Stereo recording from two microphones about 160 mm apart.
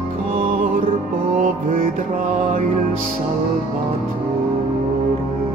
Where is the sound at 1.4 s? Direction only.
60° right (ahead or behind).